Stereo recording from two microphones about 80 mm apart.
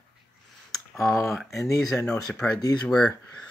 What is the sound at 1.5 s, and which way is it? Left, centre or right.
Speech, left.